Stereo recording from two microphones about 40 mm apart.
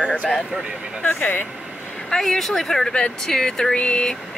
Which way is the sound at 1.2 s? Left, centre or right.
Left.